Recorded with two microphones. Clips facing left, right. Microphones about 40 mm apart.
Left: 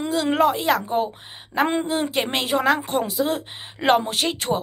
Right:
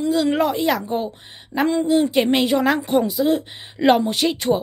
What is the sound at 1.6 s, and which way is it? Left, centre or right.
Speech, left.